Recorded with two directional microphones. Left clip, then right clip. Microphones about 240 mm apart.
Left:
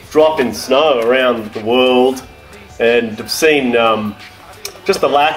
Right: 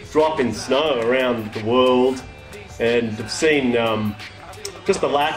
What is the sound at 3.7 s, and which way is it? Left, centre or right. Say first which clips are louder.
Speech: left 7 dB; left.